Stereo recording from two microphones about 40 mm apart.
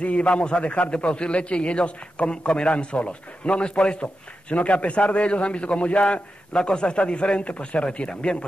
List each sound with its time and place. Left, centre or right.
0.0 s a man's voice: left